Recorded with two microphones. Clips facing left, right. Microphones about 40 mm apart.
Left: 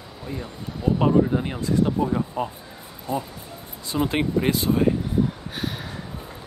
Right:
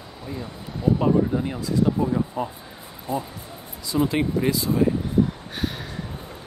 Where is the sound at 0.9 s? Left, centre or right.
Left.